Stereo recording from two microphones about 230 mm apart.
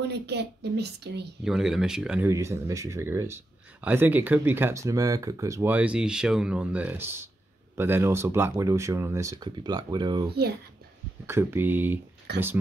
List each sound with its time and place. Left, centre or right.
0.1 s a woman's voice: right
1.4 s speech: centre
11.2 s speech: centre
12.3 s a woman's voice: right